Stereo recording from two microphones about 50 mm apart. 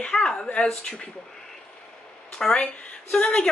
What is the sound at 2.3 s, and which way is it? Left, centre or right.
Speech, centre.